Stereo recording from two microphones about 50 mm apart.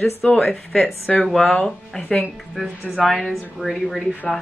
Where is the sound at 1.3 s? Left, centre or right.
Centre.